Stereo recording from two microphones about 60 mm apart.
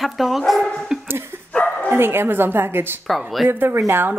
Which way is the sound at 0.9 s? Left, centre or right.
Centre.